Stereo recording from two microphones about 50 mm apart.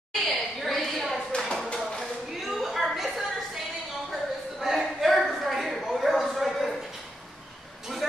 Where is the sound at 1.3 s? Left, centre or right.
Centre.